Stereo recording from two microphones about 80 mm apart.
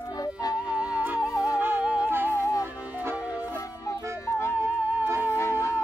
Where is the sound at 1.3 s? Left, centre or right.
Left.